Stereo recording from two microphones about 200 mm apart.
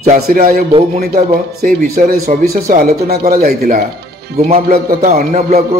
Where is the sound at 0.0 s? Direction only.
40° right (ahead or behind).